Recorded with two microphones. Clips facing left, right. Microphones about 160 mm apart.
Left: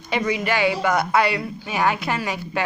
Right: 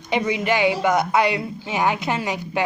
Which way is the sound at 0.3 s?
20° right (ahead or behind).